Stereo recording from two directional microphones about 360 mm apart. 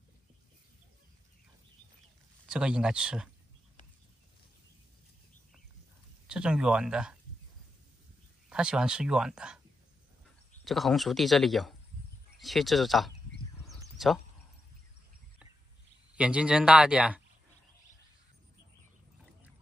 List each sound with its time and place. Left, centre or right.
2.4 s speech: centre
6.2 s speech: centre
8.5 s speech: centre
10.6 s speech: centre
13.7 s a sound: centre
16.2 s speech: centre